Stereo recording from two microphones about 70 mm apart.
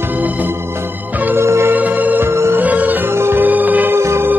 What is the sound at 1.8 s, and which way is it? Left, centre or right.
Music, right.